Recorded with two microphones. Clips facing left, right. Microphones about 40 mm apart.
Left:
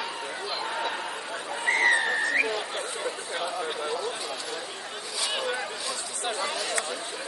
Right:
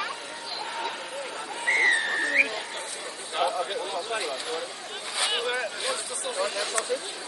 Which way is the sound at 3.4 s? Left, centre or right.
Right.